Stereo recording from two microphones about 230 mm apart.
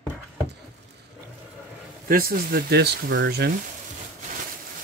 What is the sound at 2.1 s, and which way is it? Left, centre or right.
Speech, right.